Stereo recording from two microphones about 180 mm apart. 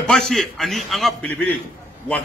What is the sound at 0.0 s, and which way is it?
A man's voice, centre (ahead or behind).